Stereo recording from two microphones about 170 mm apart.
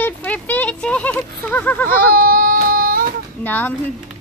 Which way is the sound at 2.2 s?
60° right (ahead or behind).